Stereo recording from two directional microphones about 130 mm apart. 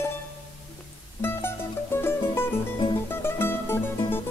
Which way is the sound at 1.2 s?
20° left (ahead or behind).